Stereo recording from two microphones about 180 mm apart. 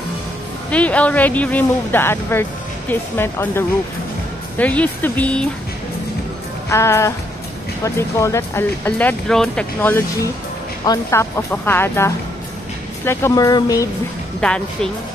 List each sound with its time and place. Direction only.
0.7 s speech: 5° left (ahead or behind)
6.7 s speech: 15° left (ahead or behind)
14.4 s speech: 5° left (ahead or behind)